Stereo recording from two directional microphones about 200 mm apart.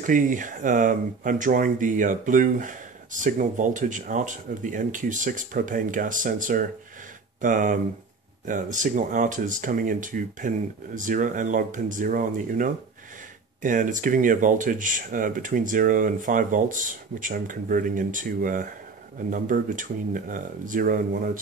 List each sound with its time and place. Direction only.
0.0 s speech: 40° right (ahead or behind)